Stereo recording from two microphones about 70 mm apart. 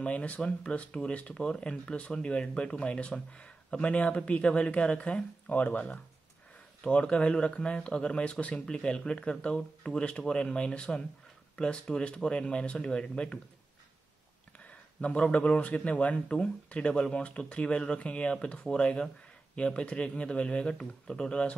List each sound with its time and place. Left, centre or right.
0.0 s speech: centre
14.6 s speech: centre